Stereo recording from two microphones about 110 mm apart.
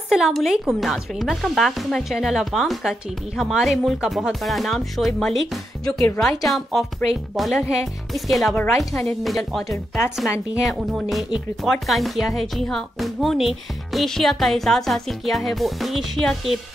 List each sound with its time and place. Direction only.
0.1 s speech: centre (ahead or behind)
9.7 s speech: 25° left (ahead or behind)
10.6 s speech: 5° right (ahead or behind)